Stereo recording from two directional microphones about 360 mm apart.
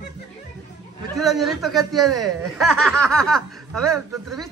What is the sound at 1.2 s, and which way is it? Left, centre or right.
Speech, centre.